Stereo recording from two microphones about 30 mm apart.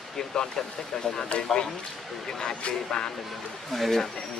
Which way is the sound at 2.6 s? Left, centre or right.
Left.